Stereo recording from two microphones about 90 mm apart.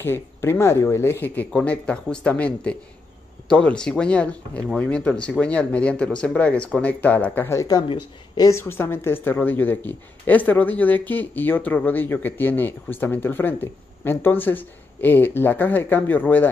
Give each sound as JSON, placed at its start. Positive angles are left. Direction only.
{"t": 0.0, "sound": "speech", "side_deg": 25}
{"t": 7.7, "sound": "speech", "side_deg": 45}
{"t": 8.4, "sound": "speech", "side_deg": 30}